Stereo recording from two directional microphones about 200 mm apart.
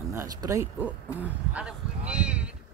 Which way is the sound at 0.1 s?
15° right (ahead or behind).